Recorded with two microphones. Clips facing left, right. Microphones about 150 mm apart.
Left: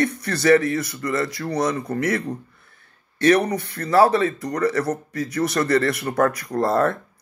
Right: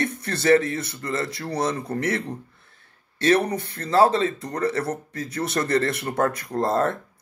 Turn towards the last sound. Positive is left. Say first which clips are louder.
# left 2 dB
turn(degrees=-20)  # may be behind; listen again after turning